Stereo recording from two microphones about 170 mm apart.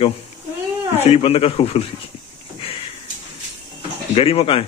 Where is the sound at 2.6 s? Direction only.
35° left (ahead or behind).